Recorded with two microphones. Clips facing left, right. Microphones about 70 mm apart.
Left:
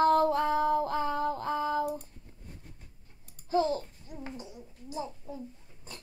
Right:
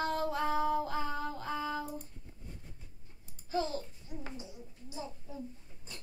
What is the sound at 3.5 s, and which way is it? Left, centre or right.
Speech, left.